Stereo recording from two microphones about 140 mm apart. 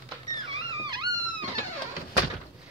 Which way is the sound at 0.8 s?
30° right (ahead or behind).